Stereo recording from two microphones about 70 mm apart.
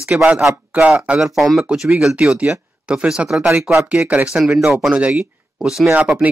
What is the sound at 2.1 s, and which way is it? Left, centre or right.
Speech, centre.